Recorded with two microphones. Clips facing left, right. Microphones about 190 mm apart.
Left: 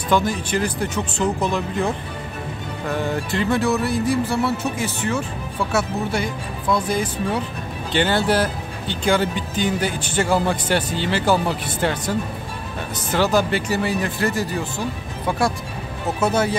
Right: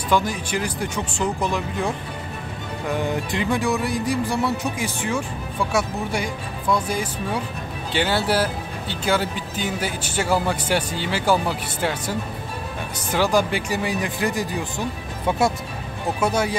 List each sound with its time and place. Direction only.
0.1 s speech: 10° right (ahead or behind)
2.9 s speech: 15° right (ahead or behind)
16.2 s speech: 10° right (ahead or behind)